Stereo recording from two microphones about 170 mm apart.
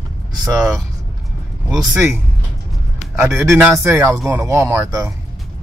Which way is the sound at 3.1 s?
15° right (ahead or behind).